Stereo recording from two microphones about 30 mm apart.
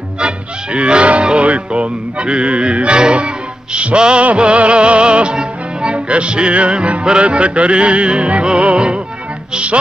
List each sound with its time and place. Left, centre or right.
0.2 s music: right